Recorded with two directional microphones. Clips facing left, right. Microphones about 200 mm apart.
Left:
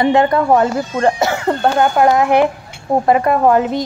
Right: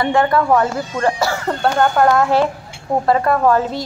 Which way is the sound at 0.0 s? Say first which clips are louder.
Left 3 dB; 20° left (ahead or behind).